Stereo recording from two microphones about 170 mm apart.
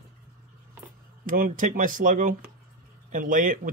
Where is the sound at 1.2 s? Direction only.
55° right (ahead or behind).